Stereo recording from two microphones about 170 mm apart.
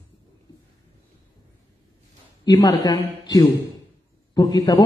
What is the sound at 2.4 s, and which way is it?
A man's voice, 20° left (ahead or behind).